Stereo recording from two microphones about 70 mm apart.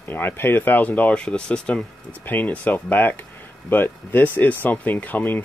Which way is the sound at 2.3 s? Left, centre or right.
Left.